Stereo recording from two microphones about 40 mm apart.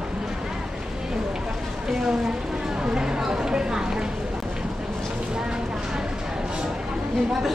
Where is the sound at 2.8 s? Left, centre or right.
Right.